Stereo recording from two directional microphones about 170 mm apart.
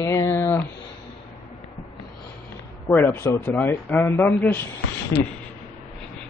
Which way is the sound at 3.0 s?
15° left (ahead or behind).